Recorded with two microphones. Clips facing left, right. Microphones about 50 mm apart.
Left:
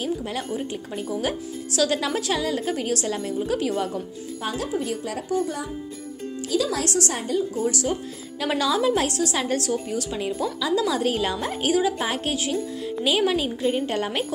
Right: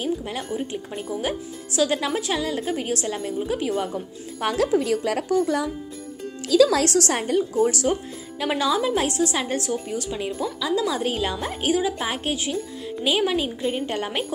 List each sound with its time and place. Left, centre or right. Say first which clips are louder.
0.0 s speech: even; centre
4.4 s speech: right 6 dB; right
7.2 s a woman's voice: right 3 dB; right
8.4 s a woman's voice: even; centre